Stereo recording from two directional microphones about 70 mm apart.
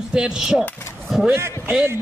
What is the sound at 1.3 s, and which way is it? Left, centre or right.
Speech, right.